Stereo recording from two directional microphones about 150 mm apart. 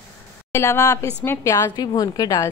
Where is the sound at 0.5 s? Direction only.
15° left (ahead or behind).